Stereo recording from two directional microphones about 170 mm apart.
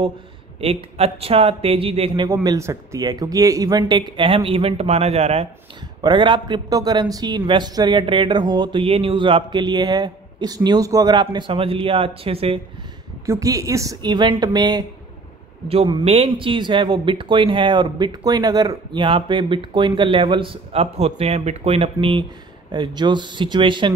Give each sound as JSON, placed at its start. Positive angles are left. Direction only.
{"t": 0.6, "sound": "speech", "side_deg": -35}
{"t": 2.2, "sound": "a man's voice", "side_deg": -20}
{"t": 5.9, "sound": "a man's voice", "side_deg": -25}
{"t": 13.2, "sound": "a man's voice", "side_deg": -20}
{"t": 15.7, "sound": "a man's voice", "side_deg": -35}